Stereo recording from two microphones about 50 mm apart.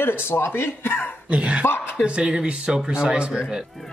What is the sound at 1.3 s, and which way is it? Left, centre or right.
Speech, right.